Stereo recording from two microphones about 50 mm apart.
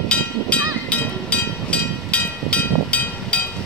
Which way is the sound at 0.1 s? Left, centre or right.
Left.